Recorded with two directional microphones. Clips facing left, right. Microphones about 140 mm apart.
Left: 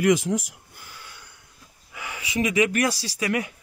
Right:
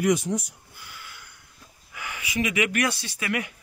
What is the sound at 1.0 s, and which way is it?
Sniff, 30° left (ahead or behind).